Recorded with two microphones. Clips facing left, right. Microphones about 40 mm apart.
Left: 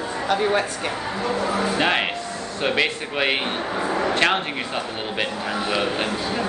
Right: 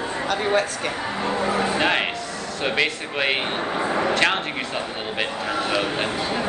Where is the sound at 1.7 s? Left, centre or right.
Centre.